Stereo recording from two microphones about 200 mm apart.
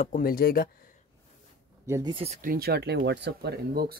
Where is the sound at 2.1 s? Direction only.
30° right (ahead or behind).